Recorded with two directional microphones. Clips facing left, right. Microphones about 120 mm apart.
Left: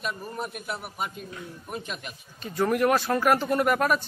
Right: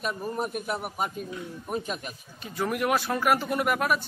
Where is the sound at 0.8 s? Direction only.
40° right (ahead or behind).